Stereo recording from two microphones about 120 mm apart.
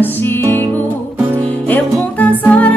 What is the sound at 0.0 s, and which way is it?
Music, 15° left (ahead or behind).